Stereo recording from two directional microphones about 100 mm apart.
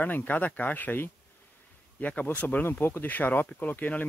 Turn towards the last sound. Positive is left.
turn(degrees=15)  # may be behind; listen again after turning